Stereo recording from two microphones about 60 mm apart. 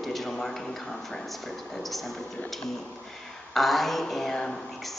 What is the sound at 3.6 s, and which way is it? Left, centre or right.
Speech, centre.